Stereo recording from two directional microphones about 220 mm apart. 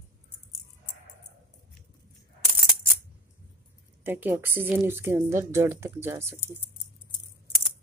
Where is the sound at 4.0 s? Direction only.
10° right (ahead or behind).